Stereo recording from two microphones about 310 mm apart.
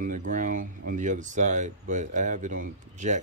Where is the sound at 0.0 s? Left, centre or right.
Right.